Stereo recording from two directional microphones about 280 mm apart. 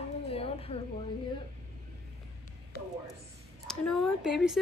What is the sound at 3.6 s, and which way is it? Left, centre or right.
Speech, centre.